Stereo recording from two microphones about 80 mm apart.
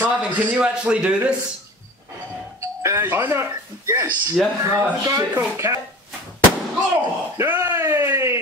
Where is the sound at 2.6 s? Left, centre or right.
Right.